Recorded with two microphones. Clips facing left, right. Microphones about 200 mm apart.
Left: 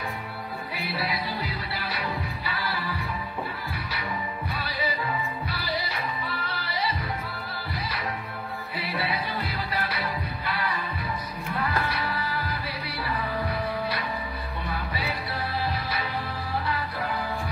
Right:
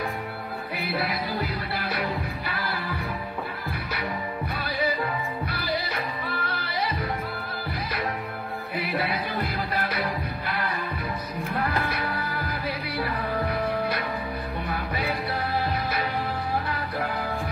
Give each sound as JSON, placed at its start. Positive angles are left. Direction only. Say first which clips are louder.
{"t": 0.7, "sound": "music", "louder": "right 3 dB", "side_deg": -50}
{"t": 4.6, "sound": "music", "louder": "right 4 dB", "side_deg": -45}
{"t": 8.7, "sound": "music", "louder": "right 3 dB", "side_deg": -50}